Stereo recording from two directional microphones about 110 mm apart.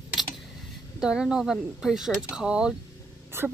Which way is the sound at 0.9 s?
5° right (ahead or behind).